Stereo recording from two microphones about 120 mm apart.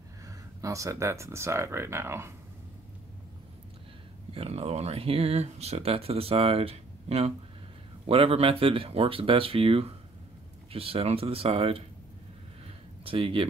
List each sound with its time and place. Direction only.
0.3 s speech: 25° right (ahead or behind)
4.3 s speech: 55° right (ahead or behind)
12.6 s a sound: 50° right (ahead or behind)